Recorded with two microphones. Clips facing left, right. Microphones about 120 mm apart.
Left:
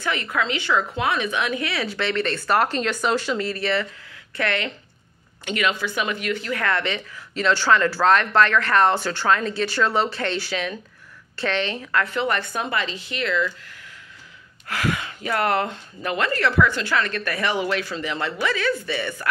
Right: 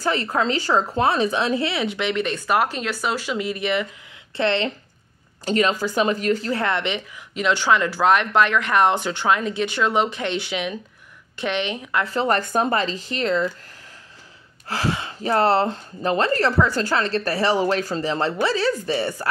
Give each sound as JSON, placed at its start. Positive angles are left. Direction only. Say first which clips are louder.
{"t": 0.0, "sound": "speech", "louder": "right 3 dB", "side_deg": -35}
{"t": 4.4, "sound": "speech", "louder": "right 4 dB", "side_deg": -25}
{"t": 5.4, "sound": "speech", "louder": "right 4 dB", "side_deg": -35}
{"t": 12.1, "sound": "speech", "louder": "right 3 dB", "side_deg": -35}
{"t": 14.7, "sound": "speech", "louder": "right 1 dB", "side_deg": -30}